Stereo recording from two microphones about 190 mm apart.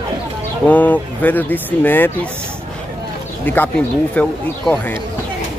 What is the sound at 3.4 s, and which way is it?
Speech, 10° left (ahead or behind).